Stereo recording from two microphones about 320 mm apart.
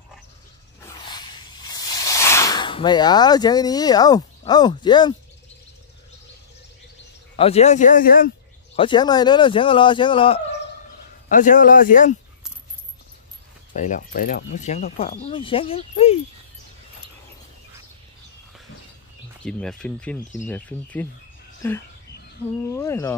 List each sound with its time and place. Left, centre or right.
1.0 s snake: centre
7.3 s speech: centre
8.7 s speech: centre
13.7 s speech: left
19.4 s speech: centre
22.6 s speech: centre